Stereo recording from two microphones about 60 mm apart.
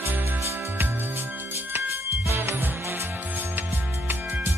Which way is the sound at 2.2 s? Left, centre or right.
Right.